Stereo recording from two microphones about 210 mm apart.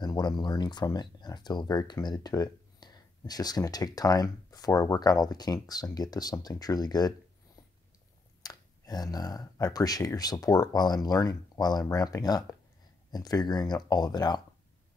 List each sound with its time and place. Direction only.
0.0 s speech: 20° left (ahead or behind)
8.4 s speech: 20° left (ahead or behind)